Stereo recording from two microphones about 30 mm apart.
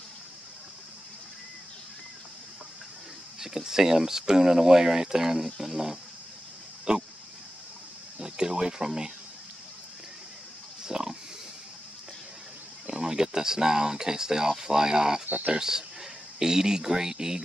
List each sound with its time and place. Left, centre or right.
3.3 s speech: centre
6.9 s pig: right
8.2 s speech: right
10.9 s pig: centre
12.8 s speech: right